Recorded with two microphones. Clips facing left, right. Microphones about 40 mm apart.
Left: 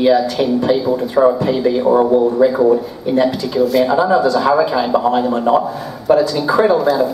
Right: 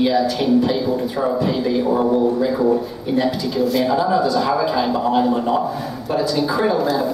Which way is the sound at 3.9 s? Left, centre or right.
Centre.